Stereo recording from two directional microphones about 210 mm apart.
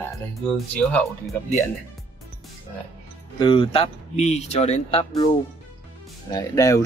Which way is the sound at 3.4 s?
25° left (ahead or behind).